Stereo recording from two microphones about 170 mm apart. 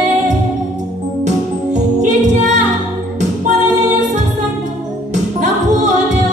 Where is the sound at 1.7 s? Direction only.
45° right (ahead or behind).